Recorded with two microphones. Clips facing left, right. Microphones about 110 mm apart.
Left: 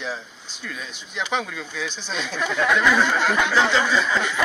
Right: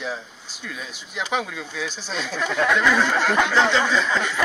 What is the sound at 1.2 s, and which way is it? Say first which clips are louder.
Speech: even; 5° right (ahead or behind).